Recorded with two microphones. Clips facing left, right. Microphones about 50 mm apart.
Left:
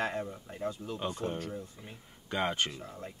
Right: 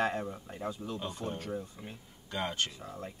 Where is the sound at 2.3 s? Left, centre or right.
Centre.